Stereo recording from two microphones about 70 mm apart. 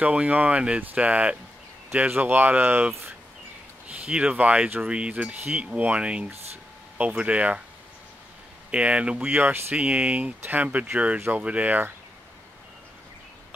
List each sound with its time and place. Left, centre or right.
0.0 s speech: right
8.6 s speech: centre
9.3 s speech: right
9.8 s speech: right